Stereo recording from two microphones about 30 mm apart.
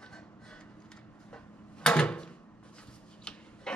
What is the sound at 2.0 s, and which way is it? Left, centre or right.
Drawer open or close, left.